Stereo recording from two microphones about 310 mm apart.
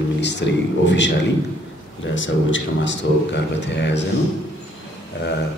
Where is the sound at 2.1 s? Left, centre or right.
Left.